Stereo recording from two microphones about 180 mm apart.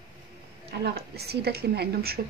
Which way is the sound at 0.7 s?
65° right (ahead or behind).